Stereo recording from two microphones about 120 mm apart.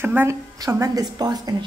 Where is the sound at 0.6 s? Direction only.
30° right (ahead or behind).